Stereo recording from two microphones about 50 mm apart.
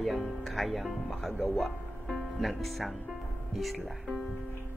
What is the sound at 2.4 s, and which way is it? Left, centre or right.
Speech, centre.